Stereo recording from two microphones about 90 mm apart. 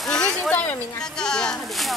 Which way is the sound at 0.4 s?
20° left (ahead or behind).